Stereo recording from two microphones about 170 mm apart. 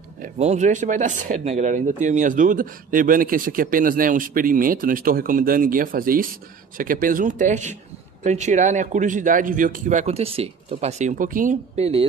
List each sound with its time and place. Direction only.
0.2 s speech: 45° right (ahead or behind)